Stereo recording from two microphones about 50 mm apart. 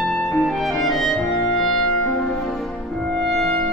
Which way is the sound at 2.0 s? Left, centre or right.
Left.